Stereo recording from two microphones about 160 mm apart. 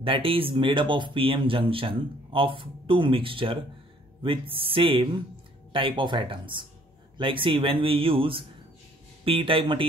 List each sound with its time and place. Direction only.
0.0 s speech: 35° right (ahead or behind)